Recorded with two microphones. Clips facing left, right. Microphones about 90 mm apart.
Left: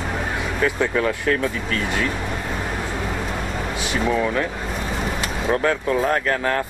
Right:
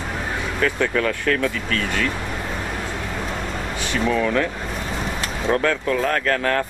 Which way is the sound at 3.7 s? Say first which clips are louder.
Even; 15° left (ahead or behind).